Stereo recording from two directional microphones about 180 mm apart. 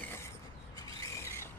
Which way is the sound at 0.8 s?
15° left (ahead or behind).